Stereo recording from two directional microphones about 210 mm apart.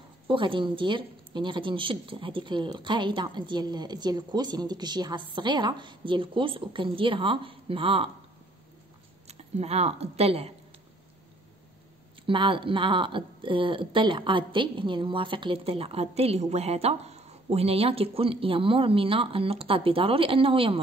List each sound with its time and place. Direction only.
0.3 s a woman's voice: 25° right (ahead or behind)
9.3 s speech: 30° right (ahead or behind)
12.3 s a woman's voice: 25° right (ahead or behind)